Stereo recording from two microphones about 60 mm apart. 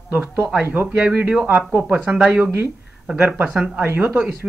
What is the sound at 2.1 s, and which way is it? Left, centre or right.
Speech, centre.